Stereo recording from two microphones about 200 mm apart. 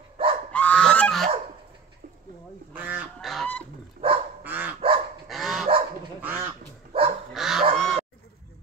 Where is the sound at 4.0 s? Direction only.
50° right (ahead or behind).